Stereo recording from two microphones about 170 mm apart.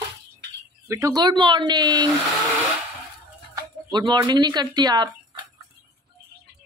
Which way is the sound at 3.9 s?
25° right (ahead or behind).